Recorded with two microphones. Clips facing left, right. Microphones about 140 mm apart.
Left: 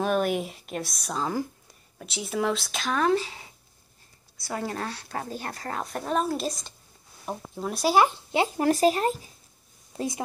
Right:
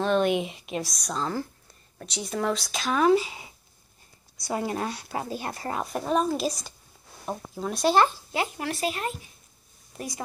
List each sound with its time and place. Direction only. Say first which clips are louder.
0.0 s speech: right 2 dB; 5° left (ahead or behind)
8.1 s speech: left 4 dB; 25° left (ahead or behind)
8.5 s speech: left 8 dB; 35° left (ahead or behind)
9.9 s a woman's voice: left 5 dB; 25° left (ahead or behind)